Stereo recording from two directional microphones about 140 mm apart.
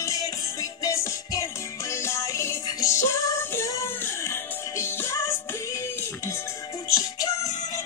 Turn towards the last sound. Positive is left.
turn(degrees=25)  # may be behind; listen again after turning